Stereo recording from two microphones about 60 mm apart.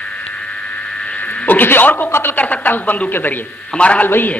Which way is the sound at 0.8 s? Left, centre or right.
Centre.